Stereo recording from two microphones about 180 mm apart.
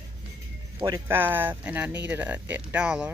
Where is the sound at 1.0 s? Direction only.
10° right (ahead or behind).